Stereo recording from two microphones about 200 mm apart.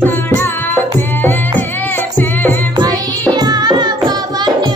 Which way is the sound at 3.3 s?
20° right (ahead or behind).